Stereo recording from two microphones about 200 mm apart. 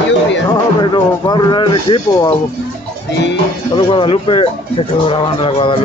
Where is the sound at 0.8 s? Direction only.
20° left (ahead or behind).